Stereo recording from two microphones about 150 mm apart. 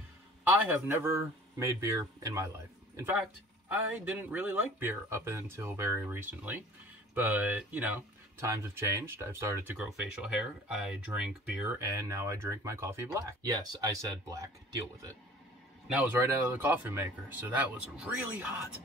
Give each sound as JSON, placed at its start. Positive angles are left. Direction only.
{"t": 0.4, "sound": "speech", "side_deg": -10}
{"t": 3.6, "sound": "speech", "side_deg": -10}
{"t": 9.8, "sound": "speech", "side_deg": -5}
{"t": 11.8, "sound": "speech", "side_deg": -20}
{"t": 16.0, "sound": "speech", "side_deg": -10}